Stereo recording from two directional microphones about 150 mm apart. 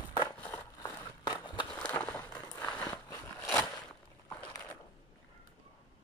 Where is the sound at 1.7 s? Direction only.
10° left (ahead or behind).